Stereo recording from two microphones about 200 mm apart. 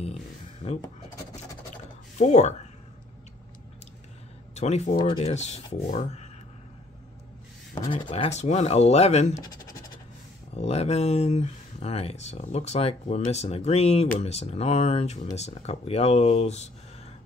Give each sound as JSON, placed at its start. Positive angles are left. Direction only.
{"t": 0.6, "sound": "speech", "side_deg": 35}
{"t": 2.1, "sound": "speech", "side_deg": 35}
{"t": 4.6, "sound": "speech", "side_deg": 35}
{"t": 7.9, "sound": "speech", "side_deg": 25}
{"t": 10.5, "sound": "speech", "side_deg": 30}